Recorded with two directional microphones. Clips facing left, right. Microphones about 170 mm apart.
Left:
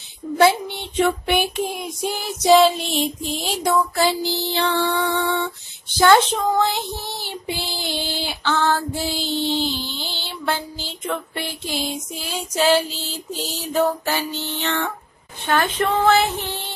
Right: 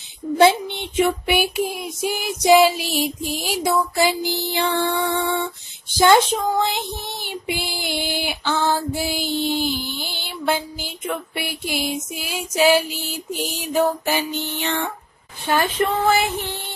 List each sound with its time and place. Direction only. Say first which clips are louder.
0.4 s child singing: right 1 dB; 20° right (ahead or behind)
0.9 s child singing: even; 10° right (ahead or behind)
2.1 s child singing: even; 15° right (ahead or behind)